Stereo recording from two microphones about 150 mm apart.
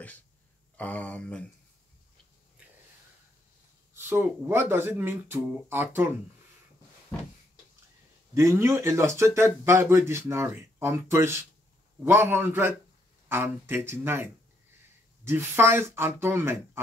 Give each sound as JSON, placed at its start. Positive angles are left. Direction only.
{"t": 0.7, "sound": "speech", "side_deg": 10}
{"t": 3.9, "sound": "speech", "side_deg": -15}
{"t": 8.4, "sound": "speech", "side_deg": -20}